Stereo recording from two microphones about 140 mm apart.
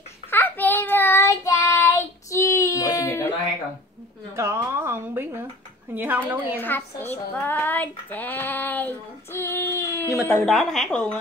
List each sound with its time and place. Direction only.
0.3 s child singing: 15° left (ahead or behind)
4.4 s a woman's voice: 20° right (ahead or behind)
6.6 s child singing: 15° left (ahead or behind)
10.2 s a woman's voice: 5° left (ahead or behind)